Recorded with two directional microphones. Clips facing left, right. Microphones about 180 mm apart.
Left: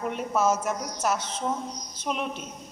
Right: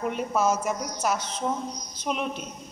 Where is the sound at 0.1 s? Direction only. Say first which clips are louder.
Left 1 dB; centre (ahead or behind).